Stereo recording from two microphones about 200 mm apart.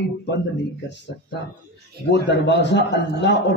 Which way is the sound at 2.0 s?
55° left (ahead or behind).